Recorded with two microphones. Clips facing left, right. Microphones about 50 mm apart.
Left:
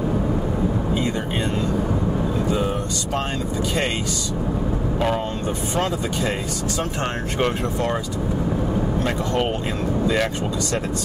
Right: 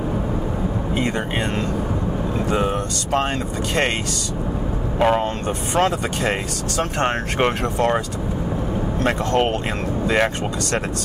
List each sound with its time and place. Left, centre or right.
2.5 s vehicle: right
4.9 s speech: right
5.8 s speech: right
10.0 s speech: right